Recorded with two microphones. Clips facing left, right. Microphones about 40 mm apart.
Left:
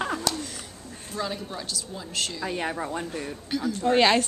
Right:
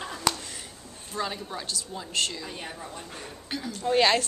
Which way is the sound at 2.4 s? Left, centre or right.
Left.